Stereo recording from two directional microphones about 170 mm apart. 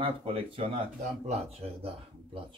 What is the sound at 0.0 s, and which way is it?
Speech, 30° right (ahead or behind).